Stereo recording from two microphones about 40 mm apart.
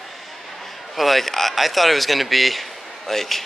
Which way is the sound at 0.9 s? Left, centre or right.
Centre.